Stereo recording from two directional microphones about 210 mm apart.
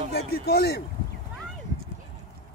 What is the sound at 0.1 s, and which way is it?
Speech, 50° left (ahead or behind).